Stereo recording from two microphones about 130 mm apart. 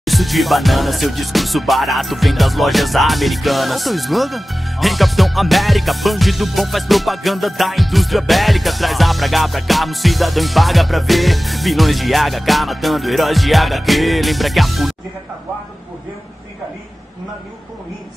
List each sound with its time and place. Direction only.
0.0 s music: centre (ahead or behind)